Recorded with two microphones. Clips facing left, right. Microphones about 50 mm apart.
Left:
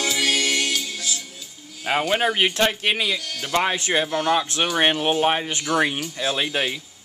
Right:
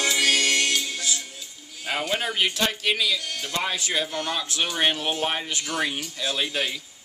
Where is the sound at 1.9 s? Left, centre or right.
Left.